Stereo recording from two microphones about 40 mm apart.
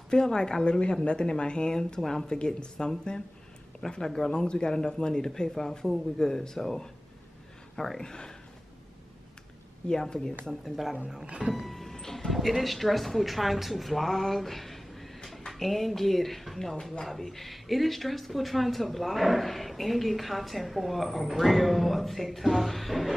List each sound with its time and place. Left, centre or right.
0.1 s speech: centre
2.3 s speech: left
8.0 s speech: centre
9.8 s speech: centre
10.6 s speech: centre
11.2 s speech: centre
11.5 s music: centre
12.3 s speech: centre